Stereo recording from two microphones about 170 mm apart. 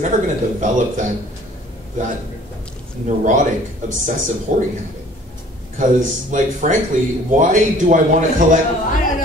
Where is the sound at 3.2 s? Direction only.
50° right (ahead or behind).